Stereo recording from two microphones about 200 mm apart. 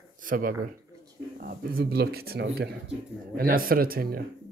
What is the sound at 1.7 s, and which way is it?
Speech, 50° right (ahead or behind).